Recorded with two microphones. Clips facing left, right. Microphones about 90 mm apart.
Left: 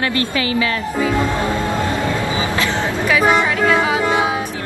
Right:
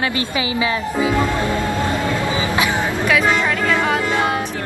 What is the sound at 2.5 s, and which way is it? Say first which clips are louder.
Vehicle: right 1 dB; 15° right (ahead or behind).